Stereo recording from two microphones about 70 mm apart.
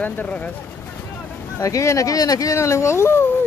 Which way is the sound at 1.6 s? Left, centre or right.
Left.